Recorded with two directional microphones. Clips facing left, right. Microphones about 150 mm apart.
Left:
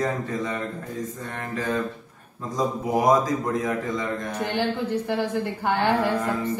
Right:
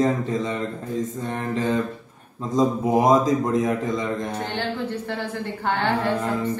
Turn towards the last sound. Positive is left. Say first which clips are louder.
# left 1 dB
turn(degrees=15)  # may be behind; listen again after turning